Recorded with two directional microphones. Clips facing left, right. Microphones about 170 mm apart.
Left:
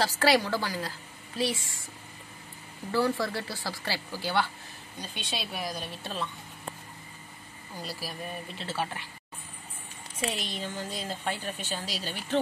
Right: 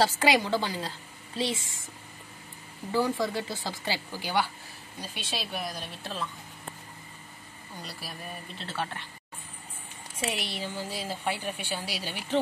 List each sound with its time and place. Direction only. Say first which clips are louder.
0.2 s a woman's voice: even; 20° right (ahead or behind)
2.9 s speech: even; 15° right (ahead or behind)
5.0 s a woman's voice: even; 5° right (ahead or behind)
7.7 s a woman's voice: left 4 dB; centre (ahead or behind)
10.1 s speech: even; 10° right (ahead or behind)